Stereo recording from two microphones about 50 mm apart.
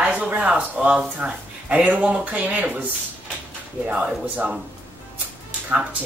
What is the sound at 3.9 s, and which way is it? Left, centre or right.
Speech, right.